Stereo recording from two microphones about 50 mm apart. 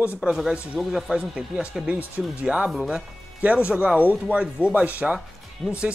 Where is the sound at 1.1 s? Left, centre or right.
Centre.